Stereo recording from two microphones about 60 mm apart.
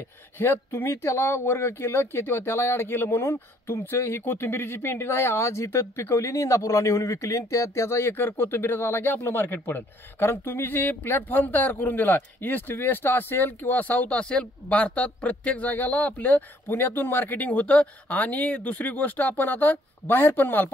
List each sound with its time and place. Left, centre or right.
0.4 s speech: left
8.1 s speech: left
16.7 s speech: left